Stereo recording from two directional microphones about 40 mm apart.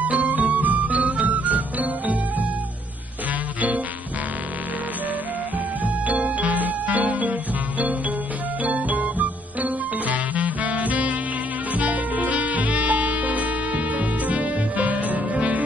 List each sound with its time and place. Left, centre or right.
0.0 s music: right
6.0 s music: right
8.6 s music: right